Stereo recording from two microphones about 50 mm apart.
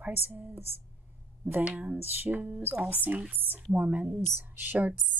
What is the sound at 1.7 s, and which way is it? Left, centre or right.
Speech, right.